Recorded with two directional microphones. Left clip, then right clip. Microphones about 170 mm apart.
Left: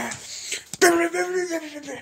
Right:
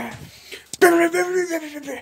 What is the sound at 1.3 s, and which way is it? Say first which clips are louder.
Speech: right 3 dB; 45° right (ahead or behind).